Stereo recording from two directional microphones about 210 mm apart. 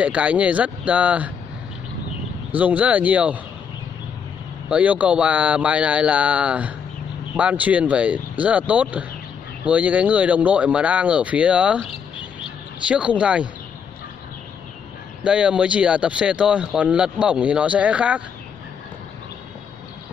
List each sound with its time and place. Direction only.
0.0 s speech: 5° right (ahead or behind)
2.5 s speech: 5° right (ahead or behind)
4.6 s speech: 5° right (ahead or behind)
11.8 s a sound: 25° left (ahead or behind)
12.8 s speech: 5° right (ahead or behind)
15.2 s speech: 5° right (ahead or behind)